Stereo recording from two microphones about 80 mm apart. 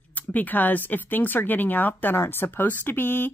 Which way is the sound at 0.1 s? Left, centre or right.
Left.